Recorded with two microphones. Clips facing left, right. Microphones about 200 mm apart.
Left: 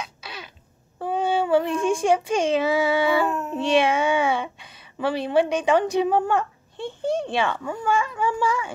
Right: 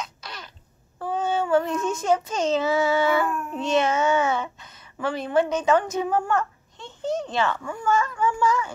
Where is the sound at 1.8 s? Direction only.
10° left (ahead or behind).